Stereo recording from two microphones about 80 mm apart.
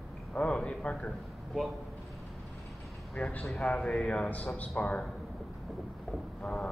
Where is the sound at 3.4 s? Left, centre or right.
Centre.